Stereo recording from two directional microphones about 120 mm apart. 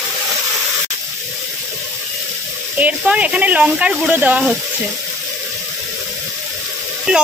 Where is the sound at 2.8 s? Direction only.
10° right (ahead or behind).